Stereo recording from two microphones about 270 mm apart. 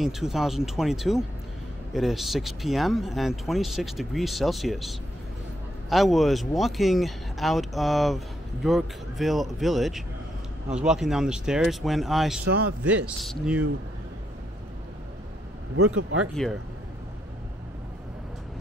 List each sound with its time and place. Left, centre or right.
0.0 s speech: centre
15.7 s speech: right
16.4 s speech: centre